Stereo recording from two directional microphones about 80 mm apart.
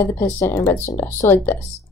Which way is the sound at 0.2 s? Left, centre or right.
Left.